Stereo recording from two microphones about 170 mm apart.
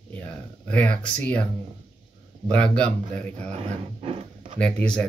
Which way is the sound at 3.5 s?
35° right (ahead or behind).